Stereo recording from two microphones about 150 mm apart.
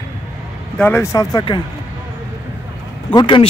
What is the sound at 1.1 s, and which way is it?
Speech, 25° left (ahead or behind).